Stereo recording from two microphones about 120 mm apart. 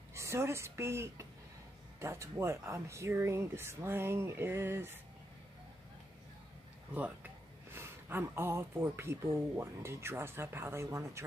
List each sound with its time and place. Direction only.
0.1 s a woman's voice: 25° right (ahead or behind)
7.7 s speech: 20° right (ahead or behind)